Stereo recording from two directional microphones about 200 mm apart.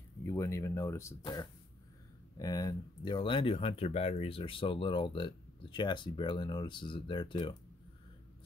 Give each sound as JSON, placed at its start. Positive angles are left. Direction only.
{"t": 0.2, "sound": "speech", "side_deg": 15}